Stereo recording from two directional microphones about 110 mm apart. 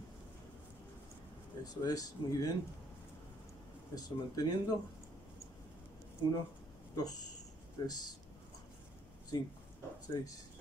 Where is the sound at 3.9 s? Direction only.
35° left (ahead or behind).